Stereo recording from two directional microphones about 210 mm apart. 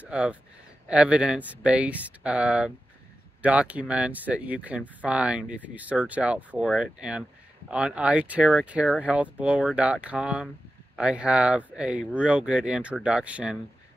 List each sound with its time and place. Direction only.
0.0 s speech: 5° right (ahead or behind)